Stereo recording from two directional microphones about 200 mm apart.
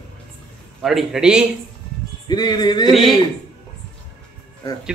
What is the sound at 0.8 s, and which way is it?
Speech, centre (ahead or behind).